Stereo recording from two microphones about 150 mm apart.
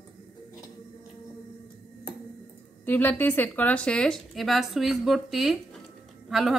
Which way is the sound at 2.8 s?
10° left (ahead or behind).